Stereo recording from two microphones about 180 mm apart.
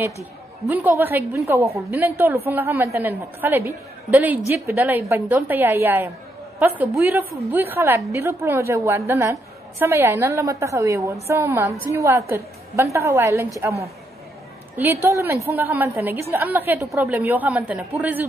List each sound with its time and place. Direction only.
0.7 s a woman's voice: 10° right (ahead or behind)
14.8 s a woman's voice: 15° right (ahead or behind)